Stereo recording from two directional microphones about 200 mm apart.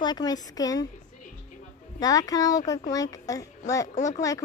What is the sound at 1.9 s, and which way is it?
Speech, 20° left (ahead or behind).